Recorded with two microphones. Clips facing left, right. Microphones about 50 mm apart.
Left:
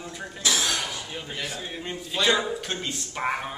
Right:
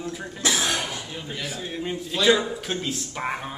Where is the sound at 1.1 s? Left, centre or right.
Centre.